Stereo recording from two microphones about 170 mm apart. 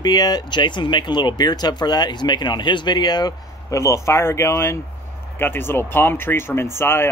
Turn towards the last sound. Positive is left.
turn(degrees=15)  # may be behind; listen again after turning